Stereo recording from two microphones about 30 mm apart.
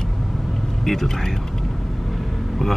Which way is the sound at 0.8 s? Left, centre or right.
Centre.